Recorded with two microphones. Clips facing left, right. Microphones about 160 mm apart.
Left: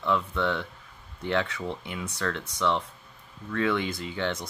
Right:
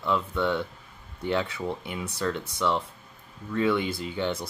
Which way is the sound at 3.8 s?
30° right (ahead or behind).